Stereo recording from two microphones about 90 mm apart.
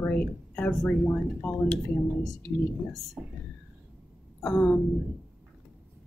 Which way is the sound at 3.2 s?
15° right (ahead or behind).